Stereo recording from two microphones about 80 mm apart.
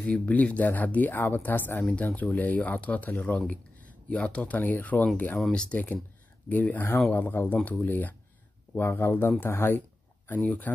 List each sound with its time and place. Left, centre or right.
0.0 s speech: centre
1.9 s speech: centre
5.4 s speech: centre